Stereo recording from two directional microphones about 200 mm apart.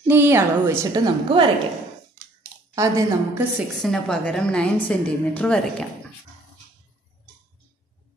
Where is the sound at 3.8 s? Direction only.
Centre (ahead or behind).